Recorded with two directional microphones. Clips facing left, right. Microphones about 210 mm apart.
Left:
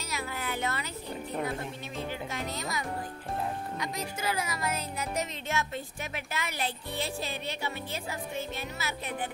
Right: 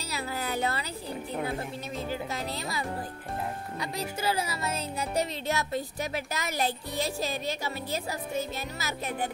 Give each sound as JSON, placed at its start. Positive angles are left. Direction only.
{"t": 0.1, "sound": "music", "side_deg": -35}
{"t": 3.8, "sound": "speech", "side_deg": -30}